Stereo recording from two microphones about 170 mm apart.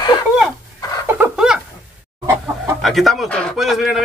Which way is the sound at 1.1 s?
10° right (ahead or behind).